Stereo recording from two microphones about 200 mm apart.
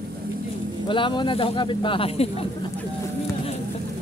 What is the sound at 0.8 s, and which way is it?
Speech, 25° left (ahead or behind).